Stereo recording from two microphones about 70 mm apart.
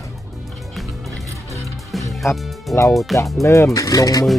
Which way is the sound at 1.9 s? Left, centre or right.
Centre.